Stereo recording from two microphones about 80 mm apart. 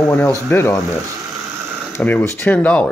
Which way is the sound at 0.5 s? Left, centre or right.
Left.